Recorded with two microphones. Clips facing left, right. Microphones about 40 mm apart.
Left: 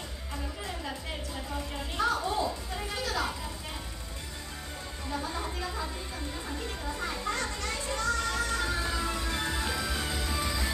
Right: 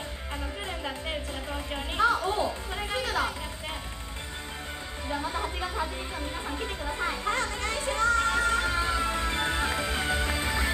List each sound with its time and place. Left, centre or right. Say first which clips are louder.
1.5 s music: right 4 dB; right
5.0 s chatter: right 3 dB; right
6.5 s music: right 3 dB; right